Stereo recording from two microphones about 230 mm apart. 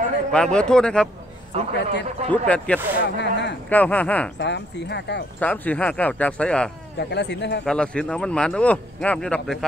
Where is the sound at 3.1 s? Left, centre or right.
Left.